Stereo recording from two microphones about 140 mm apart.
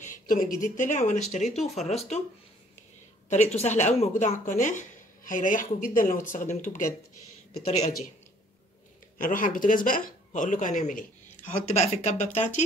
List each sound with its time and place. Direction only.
0.0 s speech: 75° left (ahead or behind); by 2.2 s 50° left (ahead or behind)
3.3 s speech: 55° left (ahead or behind)
9.2 s a woman's voice: 75° left (ahead or behind)
11.6 s speech: 50° left (ahead or behind)